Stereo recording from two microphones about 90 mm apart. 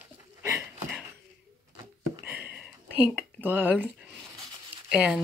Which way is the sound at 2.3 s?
15° right (ahead or behind).